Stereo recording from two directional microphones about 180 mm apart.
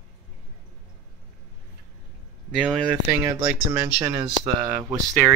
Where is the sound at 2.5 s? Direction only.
5° right (ahead or behind); by 4.7 s 25° right (ahead or behind).